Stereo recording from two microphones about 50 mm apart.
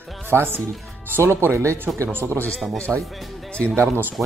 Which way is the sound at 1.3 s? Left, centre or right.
Right.